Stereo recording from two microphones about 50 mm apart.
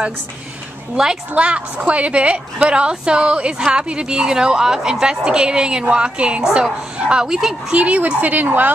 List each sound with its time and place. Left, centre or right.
1.3 s a woman's voice: right
7.2 s a woman's voice: centre
7.7 s a woman's voice: right